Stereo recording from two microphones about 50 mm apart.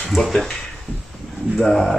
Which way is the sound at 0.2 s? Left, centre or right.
Centre.